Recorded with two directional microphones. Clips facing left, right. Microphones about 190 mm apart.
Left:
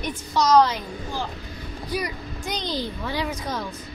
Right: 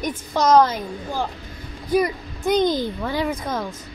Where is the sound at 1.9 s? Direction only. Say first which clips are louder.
Right 9 dB; 50° right (ahead or behind).